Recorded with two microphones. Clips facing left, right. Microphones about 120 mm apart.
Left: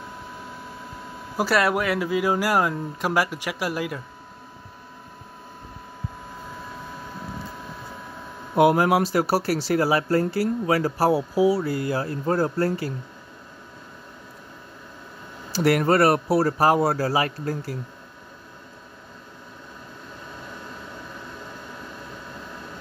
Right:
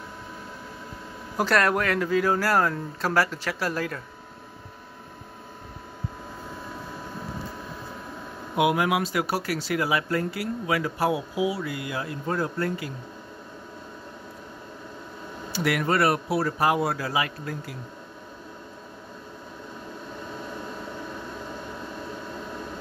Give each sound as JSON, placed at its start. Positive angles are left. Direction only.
{"t": 1.3, "sound": "speech", "side_deg": 10}
{"t": 8.5, "sound": "speech", "side_deg": 40}
{"t": 15.5, "sound": "speech", "side_deg": 40}